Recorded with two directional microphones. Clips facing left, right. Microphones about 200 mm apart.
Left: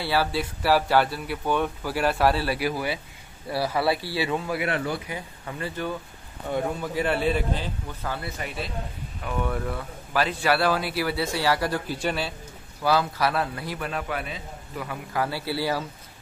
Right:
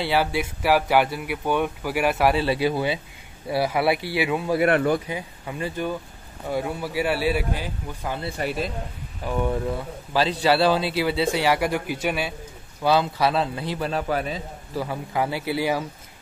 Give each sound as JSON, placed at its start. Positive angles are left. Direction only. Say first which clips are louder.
{"t": 0.0, "sound": "speech", "louder": "right 2 dB", "side_deg": -20}
{"t": 4.6, "sound": "speech", "louder": "right 8 dB", "side_deg": -55}
{"t": 5.0, "sound": "speech", "louder": "right 3 dB", "side_deg": -15}
{"t": 9.4, "sound": "a man's voice", "louder": "right 4 dB", "side_deg": -20}
{"t": 12.8, "sound": "a man's voice", "louder": "right 3 dB", "side_deg": -25}
{"t": 14.9, "sound": "a man's voice", "louder": "right 1 dB", "side_deg": -20}